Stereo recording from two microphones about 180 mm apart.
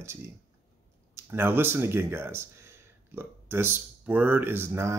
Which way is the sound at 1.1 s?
10° right (ahead or behind).